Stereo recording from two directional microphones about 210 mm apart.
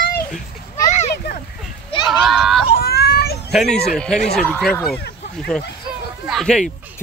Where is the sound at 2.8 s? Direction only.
50° left (ahead or behind).